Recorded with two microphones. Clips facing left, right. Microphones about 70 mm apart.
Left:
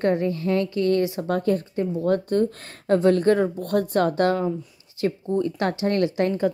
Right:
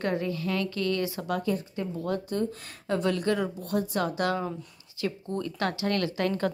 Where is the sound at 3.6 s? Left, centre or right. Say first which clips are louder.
Left 7 dB; left.